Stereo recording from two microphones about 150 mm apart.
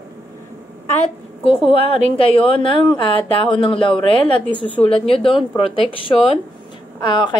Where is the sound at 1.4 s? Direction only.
40° left (ahead or behind).